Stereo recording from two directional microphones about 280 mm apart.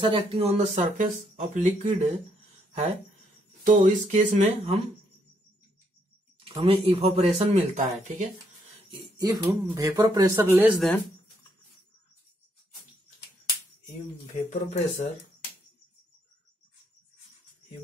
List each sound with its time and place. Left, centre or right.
0.0 s speech: centre
3.6 s speech: right
6.4 s speech: centre
14.3 s speech: left